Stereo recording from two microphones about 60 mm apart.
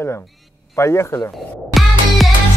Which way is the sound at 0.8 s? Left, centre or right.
Left.